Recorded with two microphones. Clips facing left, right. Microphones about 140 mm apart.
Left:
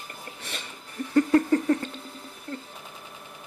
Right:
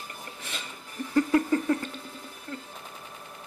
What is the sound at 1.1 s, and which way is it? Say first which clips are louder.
Laughter: left 3 dB; 35° left (ahead or behind).